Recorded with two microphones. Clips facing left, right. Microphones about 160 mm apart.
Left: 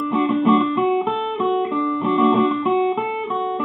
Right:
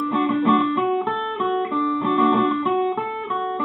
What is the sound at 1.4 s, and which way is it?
Guitar, 20° left (ahead or behind).